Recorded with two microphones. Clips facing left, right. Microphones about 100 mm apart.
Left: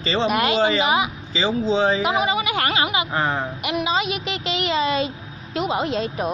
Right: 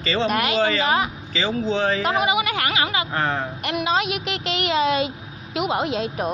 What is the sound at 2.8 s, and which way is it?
A man's voice, 20° left (ahead or behind).